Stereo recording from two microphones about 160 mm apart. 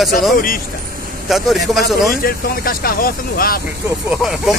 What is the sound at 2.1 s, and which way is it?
Speech, 65° left (ahead or behind).